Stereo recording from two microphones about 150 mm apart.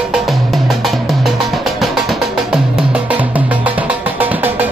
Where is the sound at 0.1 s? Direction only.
Centre (ahead or behind).